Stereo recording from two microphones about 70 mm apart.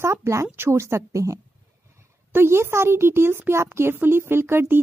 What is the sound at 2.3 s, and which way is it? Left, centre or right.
Speech, right.